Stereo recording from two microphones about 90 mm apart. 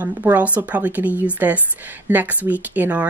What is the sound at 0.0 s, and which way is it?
A woman's voice, 20° right (ahead or behind).